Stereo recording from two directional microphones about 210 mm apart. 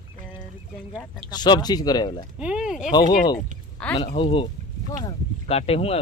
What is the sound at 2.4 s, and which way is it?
Speech, 5° right (ahead or behind).